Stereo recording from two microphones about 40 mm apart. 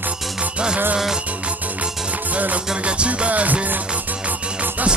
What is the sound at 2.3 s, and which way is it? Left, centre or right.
Music, right.